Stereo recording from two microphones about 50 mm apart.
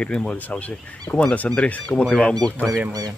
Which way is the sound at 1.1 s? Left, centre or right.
Left.